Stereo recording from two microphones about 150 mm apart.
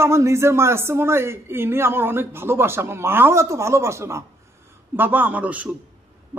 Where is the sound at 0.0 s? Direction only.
20° right (ahead or behind).